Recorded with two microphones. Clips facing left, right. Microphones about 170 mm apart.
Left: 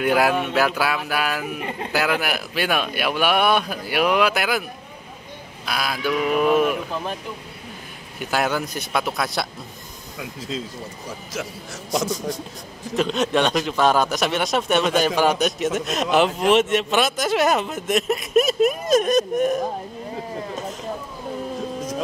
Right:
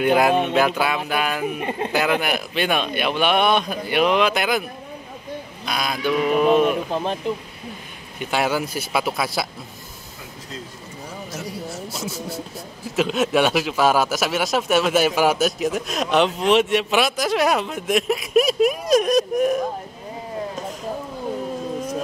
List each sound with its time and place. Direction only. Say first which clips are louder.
0.0 s speech: right 2 dB; 5° left (ahead or behind)
0.3 s speech: right 3 dB; 20° right (ahead or behind)
0.7 s speech: right 1 dB; centre (ahead or behind)
1.6 s speech: right 4 dB; 20° right (ahead or behind)
2.0 s speech: right 1 dB; 5° left (ahead or behind)
5.7 s speech: right 1 dB; 5° left (ahead or behind)
6.4 s speech: right 2 dB; 30° right (ahead or behind)
8.2 s speech: right 1 dB; centre (ahead or behind)
11.3 s speech: right 2 dB; 90° left
12.9 s speech: right 1 dB; 5° right (ahead or behind)